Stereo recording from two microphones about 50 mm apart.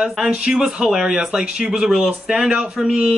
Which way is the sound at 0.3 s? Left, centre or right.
Centre.